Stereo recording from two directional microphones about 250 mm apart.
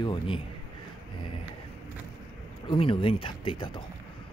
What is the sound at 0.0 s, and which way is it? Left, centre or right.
Speech, centre.